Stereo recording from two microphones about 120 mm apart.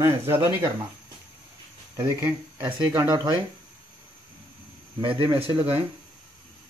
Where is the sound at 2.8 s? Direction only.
15° right (ahead or behind).